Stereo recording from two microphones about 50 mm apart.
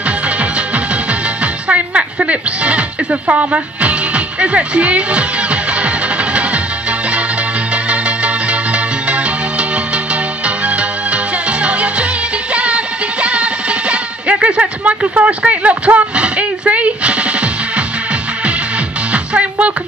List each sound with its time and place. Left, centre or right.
1.4 s music: right
7.7 s music: right
19.1 s music: right